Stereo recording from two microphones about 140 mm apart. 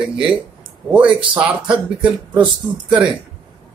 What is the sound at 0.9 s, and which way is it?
Speech, 10° right (ahead or behind).